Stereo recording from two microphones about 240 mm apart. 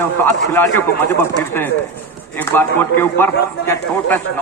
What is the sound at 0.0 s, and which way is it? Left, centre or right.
Speech, centre.